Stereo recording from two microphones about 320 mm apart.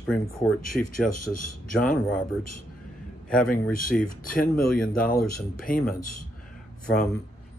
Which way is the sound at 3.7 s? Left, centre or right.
Left.